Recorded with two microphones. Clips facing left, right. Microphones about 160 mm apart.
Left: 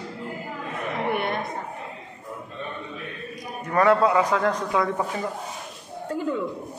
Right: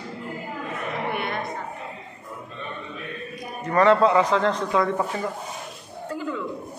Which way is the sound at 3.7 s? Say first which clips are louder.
Right 2 dB; 5° left (ahead or behind).